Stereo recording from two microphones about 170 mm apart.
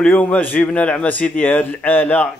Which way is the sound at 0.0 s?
5° left (ahead or behind).